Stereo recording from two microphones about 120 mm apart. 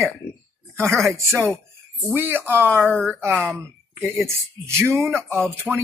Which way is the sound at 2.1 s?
15° right (ahead or behind).